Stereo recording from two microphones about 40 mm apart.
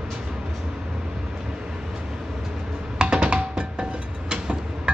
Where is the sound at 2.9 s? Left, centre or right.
Right.